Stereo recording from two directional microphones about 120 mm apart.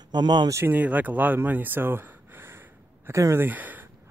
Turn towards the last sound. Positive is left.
turn(degrees=-15)  # may be behind; listen again after turning